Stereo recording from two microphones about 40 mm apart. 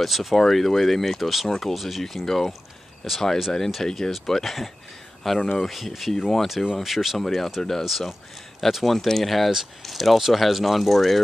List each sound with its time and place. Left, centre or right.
0.0 s speech: centre
6.6 s speech: centre
7.2 s speech: centre